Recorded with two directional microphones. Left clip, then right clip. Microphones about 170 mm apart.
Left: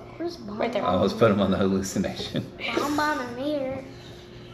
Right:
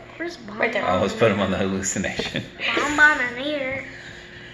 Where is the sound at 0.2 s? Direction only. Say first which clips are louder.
Right 4 dB; 5° left (ahead or behind).